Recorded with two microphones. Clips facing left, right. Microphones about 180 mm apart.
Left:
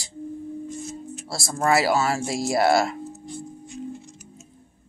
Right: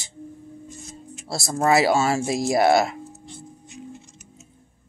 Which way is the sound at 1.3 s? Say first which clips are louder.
Right 2 dB; 25° right (ahead or behind).